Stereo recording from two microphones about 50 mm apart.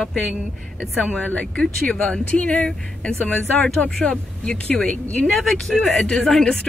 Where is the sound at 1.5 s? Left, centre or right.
Centre; by 3.6 s left.